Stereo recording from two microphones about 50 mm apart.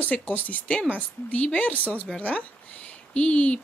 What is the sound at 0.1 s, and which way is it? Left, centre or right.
A woman's voice, left.